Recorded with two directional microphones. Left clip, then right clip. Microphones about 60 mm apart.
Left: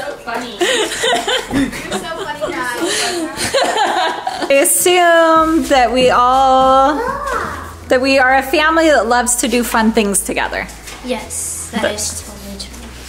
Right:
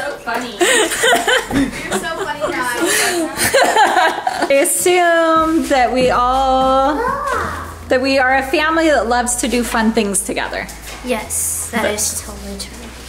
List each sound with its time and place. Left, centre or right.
0.7 s speech: right
1.5 s a woman's voice: left
2.1 s a sound: right
2.9 s speech: right
4.5 s speech: left
7.1 s a sound: centre
7.9 s a woman's voice: left
11.1 s a woman's voice: right